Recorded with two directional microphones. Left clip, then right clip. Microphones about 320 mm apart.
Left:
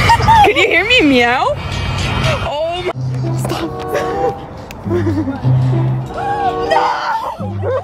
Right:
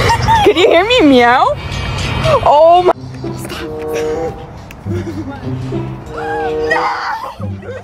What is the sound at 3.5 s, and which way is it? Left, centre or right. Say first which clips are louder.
Music: left 1 dB; centre.